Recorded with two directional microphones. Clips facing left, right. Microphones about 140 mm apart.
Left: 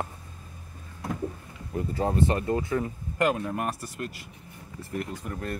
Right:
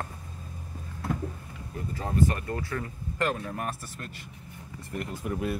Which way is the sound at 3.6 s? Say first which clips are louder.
Left 3 dB; 40° left (ahead or behind).